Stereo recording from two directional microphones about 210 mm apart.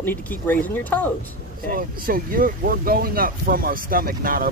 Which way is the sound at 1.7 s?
45° right (ahead or behind).